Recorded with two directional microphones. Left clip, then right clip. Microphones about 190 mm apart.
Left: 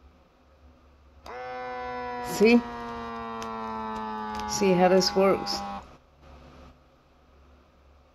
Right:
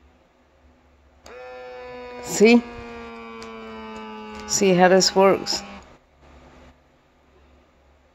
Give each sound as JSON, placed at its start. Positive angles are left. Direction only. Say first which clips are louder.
{"t": 1.2, "sound": "a sound", "louder": "left 2 dB", "side_deg": 20}
{"t": 2.2, "sound": "speech", "louder": "right 5 dB", "side_deg": -15}
{"t": 2.6, "sound": "siren", "louder": "left 1 dB", "side_deg": 15}
{"t": 4.5, "sound": "speech", "louder": "right 6 dB", "side_deg": -15}